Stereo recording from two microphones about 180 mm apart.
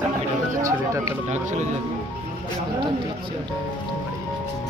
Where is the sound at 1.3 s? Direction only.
40° right (ahead or behind).